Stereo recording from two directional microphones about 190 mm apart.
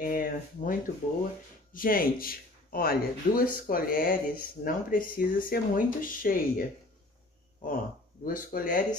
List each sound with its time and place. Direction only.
0.0 s speech: 50° left (ahead or behind)
7.6 s speech: 45° left (ahead or behind)